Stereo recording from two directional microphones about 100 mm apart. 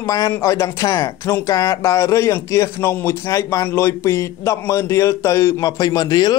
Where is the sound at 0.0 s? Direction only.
35° left (ahead or behind).